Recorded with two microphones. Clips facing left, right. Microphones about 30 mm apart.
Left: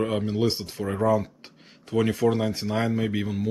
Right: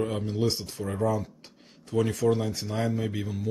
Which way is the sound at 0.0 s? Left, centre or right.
Left.